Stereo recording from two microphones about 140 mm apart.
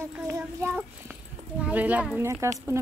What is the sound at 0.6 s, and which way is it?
Speech, 15° right (ahead or behind).